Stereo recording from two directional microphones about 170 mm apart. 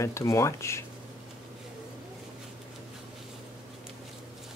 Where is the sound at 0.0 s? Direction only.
15° left (ahead or behind).